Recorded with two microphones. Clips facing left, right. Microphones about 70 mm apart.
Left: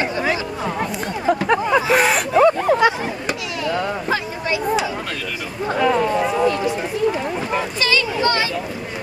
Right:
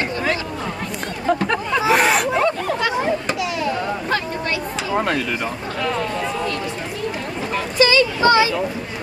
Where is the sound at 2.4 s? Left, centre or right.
Centre.